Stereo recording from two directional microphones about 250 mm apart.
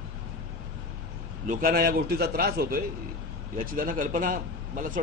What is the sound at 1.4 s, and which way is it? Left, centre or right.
Speech, right.